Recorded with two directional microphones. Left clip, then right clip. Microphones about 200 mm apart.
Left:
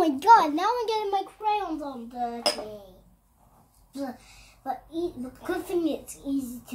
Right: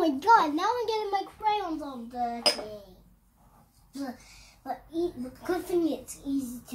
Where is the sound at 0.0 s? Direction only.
20° left (ahead or behind).